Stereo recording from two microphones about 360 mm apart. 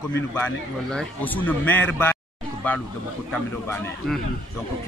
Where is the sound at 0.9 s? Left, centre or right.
Centre.